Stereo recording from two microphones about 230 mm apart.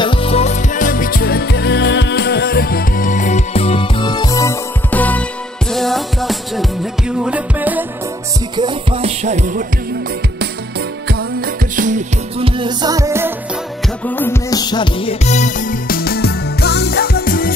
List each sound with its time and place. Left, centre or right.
0.0 s music: left; by 7.8 s centre
8.5 s music: right
11.1 s music: right; by 13.3 s centre
14.0 s music: centre; by 17.6 s left